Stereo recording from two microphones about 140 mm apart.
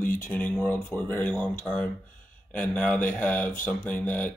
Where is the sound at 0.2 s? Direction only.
10° left (ahead or behind).